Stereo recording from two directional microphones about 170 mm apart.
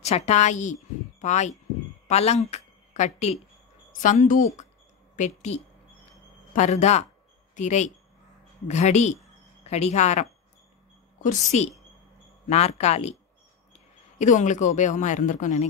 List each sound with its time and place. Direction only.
0.0 s a woman's voice: 40° left (ahead or behind)